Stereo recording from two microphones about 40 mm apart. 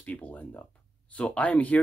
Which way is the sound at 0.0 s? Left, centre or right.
Left.